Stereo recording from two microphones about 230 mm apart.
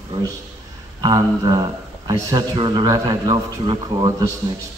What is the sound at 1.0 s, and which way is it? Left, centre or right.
A man's voice, centre.